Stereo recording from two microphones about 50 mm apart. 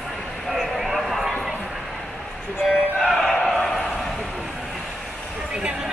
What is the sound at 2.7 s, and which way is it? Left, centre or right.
Music, centre.